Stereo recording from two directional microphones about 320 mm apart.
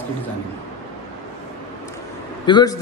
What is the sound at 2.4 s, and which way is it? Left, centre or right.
Speech, centre.